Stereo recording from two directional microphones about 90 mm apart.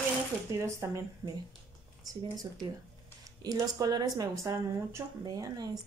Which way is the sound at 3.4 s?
45° right (ahead or behind).